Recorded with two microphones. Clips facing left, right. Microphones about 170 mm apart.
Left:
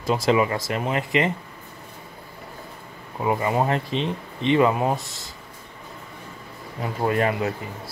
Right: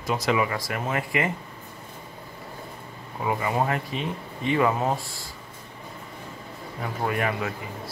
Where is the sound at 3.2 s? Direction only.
25° left (ahead or behind).